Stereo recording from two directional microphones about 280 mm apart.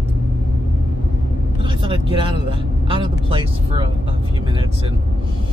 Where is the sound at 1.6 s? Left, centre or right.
Centre.